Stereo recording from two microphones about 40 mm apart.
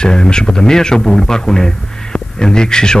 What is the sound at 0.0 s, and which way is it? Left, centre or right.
A man's voice, centre.